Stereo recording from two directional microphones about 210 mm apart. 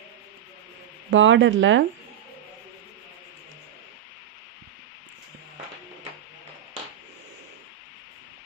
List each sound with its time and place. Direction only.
1.1 s speech: 60° right (ahead or behind)